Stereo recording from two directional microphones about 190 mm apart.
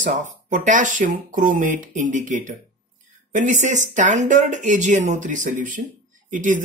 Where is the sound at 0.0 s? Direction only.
40° right (ahead or behind).